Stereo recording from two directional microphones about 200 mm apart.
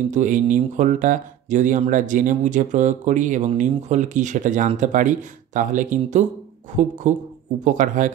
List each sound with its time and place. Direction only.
0.1 s speech: 40° right (ahead or behind)